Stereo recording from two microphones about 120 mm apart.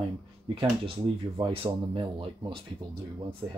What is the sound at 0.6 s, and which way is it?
Speech, 45° right (ahead or behind).